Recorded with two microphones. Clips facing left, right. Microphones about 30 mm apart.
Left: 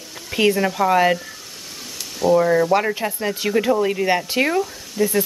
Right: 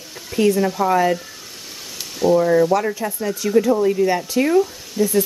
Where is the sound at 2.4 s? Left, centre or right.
Centre.